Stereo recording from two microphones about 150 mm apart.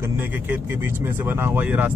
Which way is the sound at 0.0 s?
15° right (ahead or behind).